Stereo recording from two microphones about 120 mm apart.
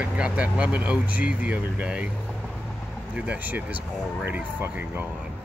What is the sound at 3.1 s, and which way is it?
Speech, 10° right (ahead or behind).